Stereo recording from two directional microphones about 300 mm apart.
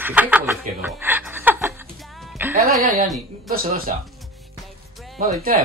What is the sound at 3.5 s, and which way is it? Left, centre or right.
Speech, right.